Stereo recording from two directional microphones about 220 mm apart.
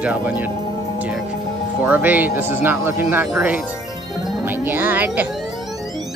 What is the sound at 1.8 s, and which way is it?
Speech, 5° right (ahead or behind).